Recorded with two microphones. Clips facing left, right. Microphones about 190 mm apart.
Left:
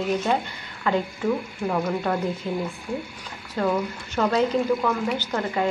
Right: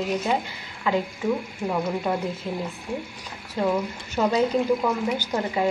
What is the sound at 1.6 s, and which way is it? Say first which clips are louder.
Speech: left 1 dB; 10° right (ahead or behind).